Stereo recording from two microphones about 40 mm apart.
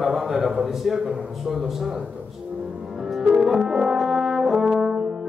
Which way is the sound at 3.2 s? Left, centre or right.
Centre.